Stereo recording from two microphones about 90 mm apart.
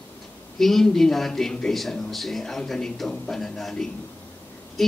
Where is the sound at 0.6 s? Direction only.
5° left (ahead or behind).